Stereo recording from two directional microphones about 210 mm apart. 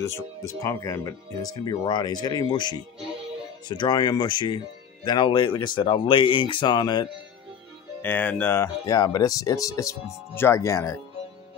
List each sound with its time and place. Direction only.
0.6 s speech: 15° left (ahead or behind)
8.0 s speech: 10° left (ahead or behind)